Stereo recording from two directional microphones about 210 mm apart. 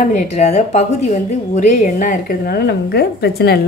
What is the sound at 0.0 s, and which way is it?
Speech, 35° left (ahead or behind).